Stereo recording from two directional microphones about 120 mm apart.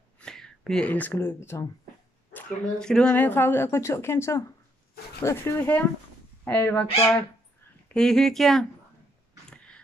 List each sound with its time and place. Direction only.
0.2 s a sound: 5° left (ahead or behind)
1.1 s speech: 20° left (ahead or behind)
2.3 s speech: 5° left (ahead or behind)
7.9 s speech: 5° left (ahead or behind)